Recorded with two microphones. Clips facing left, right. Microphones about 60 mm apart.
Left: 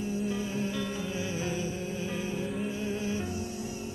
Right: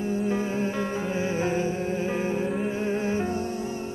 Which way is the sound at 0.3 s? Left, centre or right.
Right.